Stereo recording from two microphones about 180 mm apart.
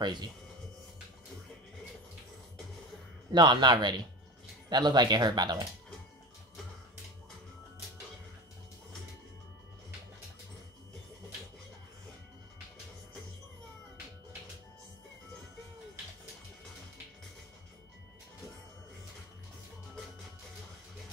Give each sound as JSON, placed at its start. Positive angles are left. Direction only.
{"t": 0.0, "sound": "speech", "side_deg": -25}
{"t": 3.3, "sound": "speech", "side_deg": -25}